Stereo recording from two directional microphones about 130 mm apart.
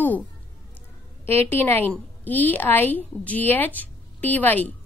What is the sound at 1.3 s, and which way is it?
A woman's voice, 15° left (ahead or behind).